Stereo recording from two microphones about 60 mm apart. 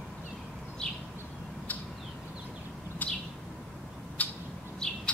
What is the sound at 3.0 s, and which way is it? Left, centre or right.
Bird, left.